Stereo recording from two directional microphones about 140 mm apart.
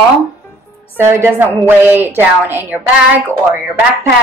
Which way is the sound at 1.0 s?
15° right (ahead or behind).